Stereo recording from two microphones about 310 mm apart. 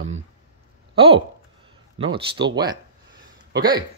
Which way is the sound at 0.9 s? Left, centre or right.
Centre.